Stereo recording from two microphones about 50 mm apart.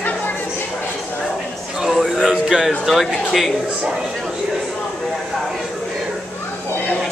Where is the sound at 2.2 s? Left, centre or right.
Centre.